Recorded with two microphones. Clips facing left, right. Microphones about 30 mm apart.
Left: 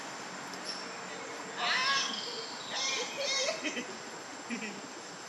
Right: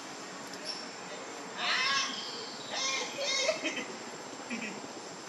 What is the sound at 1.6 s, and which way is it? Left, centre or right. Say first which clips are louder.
Cat: even; centre.